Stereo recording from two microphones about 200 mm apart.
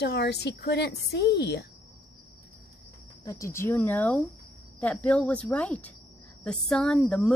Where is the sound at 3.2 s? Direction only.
15° left (ahead or behind).